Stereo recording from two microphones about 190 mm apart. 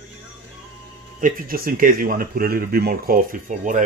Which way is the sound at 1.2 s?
50° right (ahead or behind).